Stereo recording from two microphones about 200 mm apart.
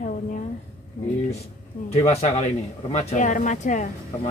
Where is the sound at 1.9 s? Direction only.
30° left (ahead or behind).